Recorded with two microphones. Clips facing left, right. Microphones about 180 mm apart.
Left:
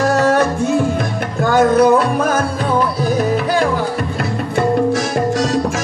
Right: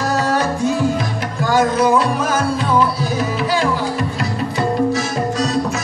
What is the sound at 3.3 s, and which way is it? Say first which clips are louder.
Music: left 2 dB; 50° left (ahead or behind).